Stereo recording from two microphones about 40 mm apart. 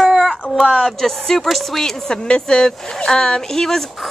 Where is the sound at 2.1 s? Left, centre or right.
Left.